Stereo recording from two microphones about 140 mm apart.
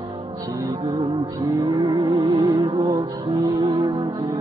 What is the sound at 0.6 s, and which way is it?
Music, 45° right (ahead or behind).